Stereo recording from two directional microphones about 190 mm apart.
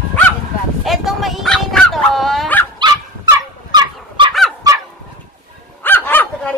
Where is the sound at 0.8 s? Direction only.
Centre (ahead or behind).